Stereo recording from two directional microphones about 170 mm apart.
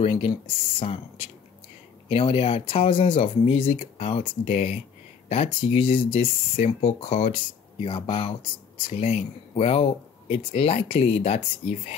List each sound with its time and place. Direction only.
0.0 s speech: 35° left (ahead or behind)